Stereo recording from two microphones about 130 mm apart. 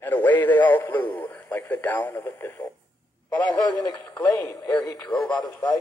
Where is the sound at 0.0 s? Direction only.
15° left (ahead or behind).